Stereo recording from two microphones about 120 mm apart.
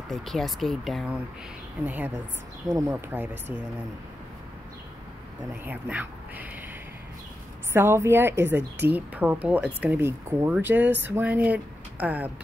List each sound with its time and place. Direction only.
0.1 s speech: centre (ahead or behind)
1.9 s a woman's voice: 15° right (ahead or behind)
5.7 s speech: 15° right (ahead or behind)
7.7 s a woman's voice: 20° right (ahead or behind)